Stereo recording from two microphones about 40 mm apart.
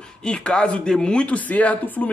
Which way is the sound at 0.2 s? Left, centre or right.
Left.